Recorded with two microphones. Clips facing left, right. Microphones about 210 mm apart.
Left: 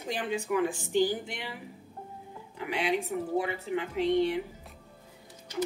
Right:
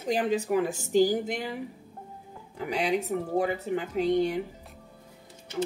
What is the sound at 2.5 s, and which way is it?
Speech, 40° right (ahead or behind).